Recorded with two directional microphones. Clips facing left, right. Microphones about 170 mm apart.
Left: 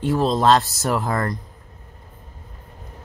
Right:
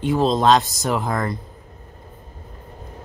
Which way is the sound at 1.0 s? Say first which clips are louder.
Even; 5° left (ahead or behind).